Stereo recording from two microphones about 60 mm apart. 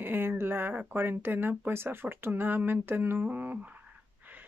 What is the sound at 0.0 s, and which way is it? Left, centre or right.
Speech, right.